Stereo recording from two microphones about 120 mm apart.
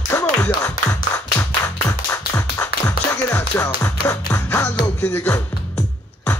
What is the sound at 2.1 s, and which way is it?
Music, 30° left (ahead or behind).